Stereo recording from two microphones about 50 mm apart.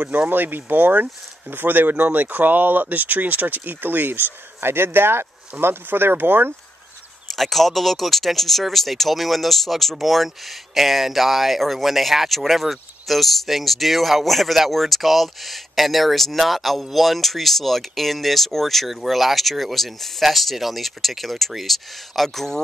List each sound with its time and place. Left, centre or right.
0.3 s speech: right
7.2 s speech: centre